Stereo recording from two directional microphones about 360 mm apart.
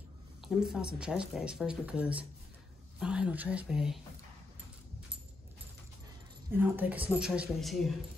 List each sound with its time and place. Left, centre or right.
0.4 s speech: centre
6.5 s speech: centre